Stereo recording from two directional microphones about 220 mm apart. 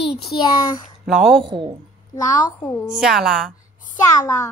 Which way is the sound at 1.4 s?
20° right (ahead or behind).